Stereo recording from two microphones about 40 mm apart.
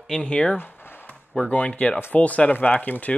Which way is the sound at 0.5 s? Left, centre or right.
Left.